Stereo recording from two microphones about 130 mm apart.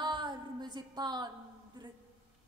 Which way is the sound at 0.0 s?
35° right (ahead or behind).